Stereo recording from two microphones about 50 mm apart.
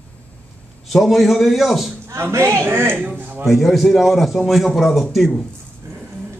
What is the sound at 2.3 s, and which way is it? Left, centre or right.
Speech, right.